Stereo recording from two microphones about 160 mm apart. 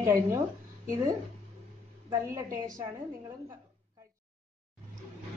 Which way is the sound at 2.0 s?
15° right (ahead or behind).